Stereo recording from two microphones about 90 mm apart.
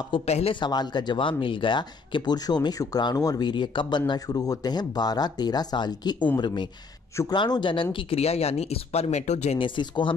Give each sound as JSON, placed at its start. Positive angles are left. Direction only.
{"t": 0.1, "sound": "a man's voice", "side_deg": 80}
{"t": 0.7, "sound": "speech", "side_deg": 50}
{"t": 4.1, "sound": "speech", "side_deg": 45}
{"t": 7.7, "sound": "speech", "side_deg": 75}
{"t": 9.6, "sound": "speech", "side_deg": 65}